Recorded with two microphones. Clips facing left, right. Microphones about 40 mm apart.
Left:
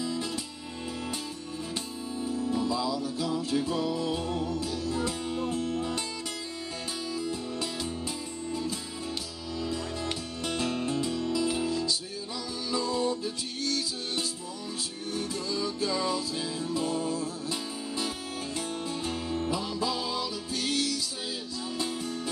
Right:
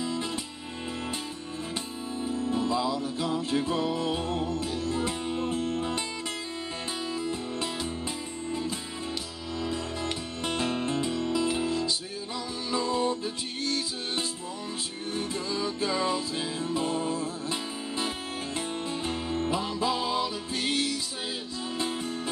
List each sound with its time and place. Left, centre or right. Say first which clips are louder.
0.0 s music: right 1 dB; right
2.2 s music: right 1 dB; right
7.2 s music: left 1 dB; right
10.4 s music: right 1 dB; right